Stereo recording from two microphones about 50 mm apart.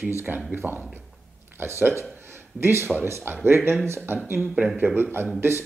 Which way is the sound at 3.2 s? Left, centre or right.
Right.